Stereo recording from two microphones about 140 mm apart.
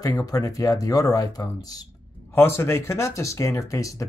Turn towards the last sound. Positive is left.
turn(degrees=20)  # may be behind; listen again after turning